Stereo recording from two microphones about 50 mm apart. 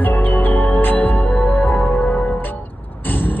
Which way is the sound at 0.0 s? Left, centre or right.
Left.